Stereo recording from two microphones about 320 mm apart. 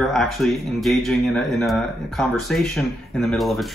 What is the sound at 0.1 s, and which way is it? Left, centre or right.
Speech, centre.